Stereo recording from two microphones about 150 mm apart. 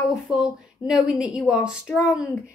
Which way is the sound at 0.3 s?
5° right (ahead or behind).